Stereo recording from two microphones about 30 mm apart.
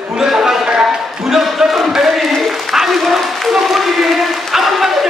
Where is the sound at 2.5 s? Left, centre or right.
Centre.